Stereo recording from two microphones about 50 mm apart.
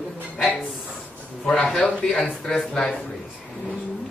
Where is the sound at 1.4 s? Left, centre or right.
Left.